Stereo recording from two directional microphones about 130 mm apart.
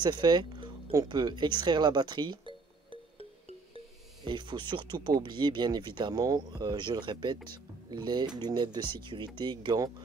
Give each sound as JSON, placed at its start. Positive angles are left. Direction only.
{"t": 0.0, "sound": "speech", "side_deg": -35}
{"t": 3.2, "sound": "music", "side_deg": -50}
{"t": 4.2, "sound": "speech", "side_deg": -35}